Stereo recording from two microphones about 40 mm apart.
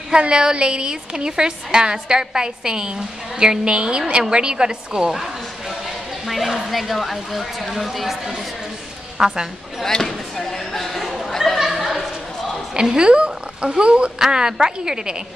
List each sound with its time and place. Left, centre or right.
0.1 s a woman's voice: right; by 8.2 s centre
9.2 s a woman's voice: centre
10.0 s a sound: centre
11.1 s chatter: centre
11.6 s a sound: centre
12.7 s a woman's voice: right